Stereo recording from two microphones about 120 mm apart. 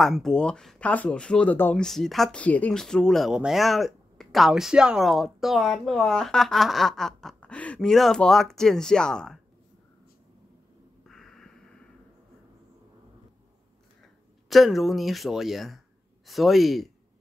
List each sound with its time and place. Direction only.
0.0 s speech: centre (ahead or behind)
1.9 s speech: centre (ahead or behind)
11.1 s a sound: 5° left (ahead or behind)
14.5 s speech: centre (ahead or behind)